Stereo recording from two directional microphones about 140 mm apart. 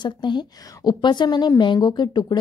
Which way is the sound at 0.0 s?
35° left (ahead or behind).